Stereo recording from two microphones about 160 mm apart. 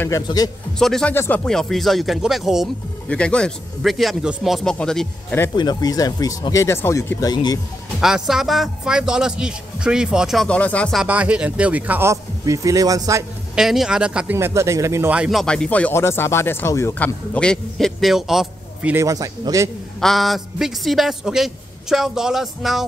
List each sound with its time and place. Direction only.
0.0 s speech: 20° left (ahead or behind)
0.7 s speech: 5° left (ahead or behind)
5.6 s speech: 25° left (ahead or behind)
8.0 s speech: 5° right (ahead or behind)
11.0 s speech: 10° right (ahead or behind)
13.6 s speech: centre (ahead or behind)
14.3 s speech: 15° right (ahead or behind)
19.0 s speech: 20° right (ahead or behind)
20.0 s speech: centre (ahead or behind)